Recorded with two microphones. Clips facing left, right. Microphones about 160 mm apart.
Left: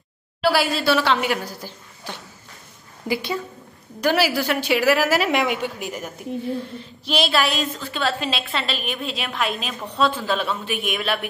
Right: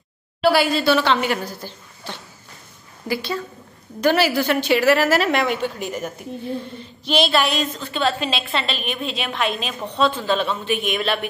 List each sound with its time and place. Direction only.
0.4 s a woman's voice: centre (ahead or behind)
4.0 s a woman's voice: 5° left (ahead or behind)